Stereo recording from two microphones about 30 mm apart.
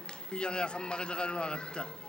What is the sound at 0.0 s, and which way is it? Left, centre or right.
A man's voice, left.